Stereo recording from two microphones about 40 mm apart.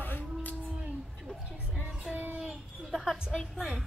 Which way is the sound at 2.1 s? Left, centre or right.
Centre.